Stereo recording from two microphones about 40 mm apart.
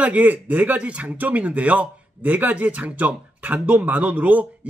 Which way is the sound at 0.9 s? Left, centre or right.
Right.